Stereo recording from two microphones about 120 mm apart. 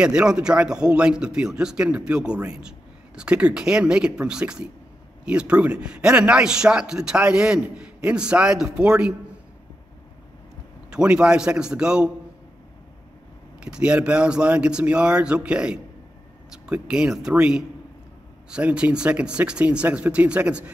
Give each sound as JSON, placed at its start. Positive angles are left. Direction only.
{"t": 0.0, "sound": "a man's voice", "side_deg": -10}
{"t": 8.6, "sound": "a man's voice", "side_deg": -20}
{"t": 10.9, "sound": "a man's voice", "side_deg": -10}
{"t": 13.6, "sound": "a man's voice", "side_deg": -10}